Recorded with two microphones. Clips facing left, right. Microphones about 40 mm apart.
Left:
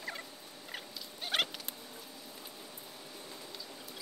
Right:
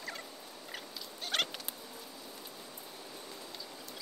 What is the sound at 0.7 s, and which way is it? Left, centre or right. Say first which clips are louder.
Fowl: left 1 dB; centre.